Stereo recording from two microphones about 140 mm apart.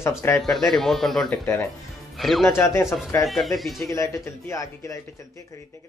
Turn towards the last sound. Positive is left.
turn(degrees=20)  # may be behind; listen again after turning